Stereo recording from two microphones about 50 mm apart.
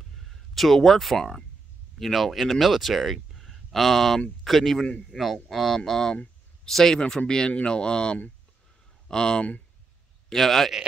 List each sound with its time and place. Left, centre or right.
0.3 s speech: centre
5.8 s speech: centre